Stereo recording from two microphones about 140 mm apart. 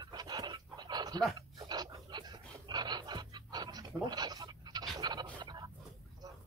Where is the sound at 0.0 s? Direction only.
30° right (ahead or behind).